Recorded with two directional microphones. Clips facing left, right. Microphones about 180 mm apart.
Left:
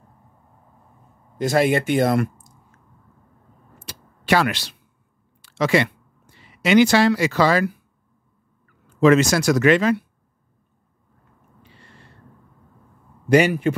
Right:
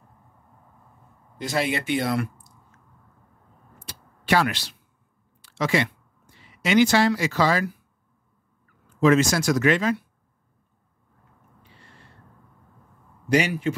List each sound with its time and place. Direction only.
1.4 s speech: 50° left (ahead or behind)
3.8 s a sound: 75° left (ahead or behind)
5.4 s speech: 70° left (ahead or behind)
9.0 s speech: 75° left (ahead or behind)
13.3 s a man's voice: 55° left (ahead or behind)